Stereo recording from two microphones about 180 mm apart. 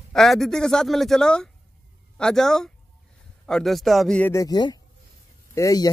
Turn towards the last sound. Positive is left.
turn(degrees=20)  # may be behind; listen again after turning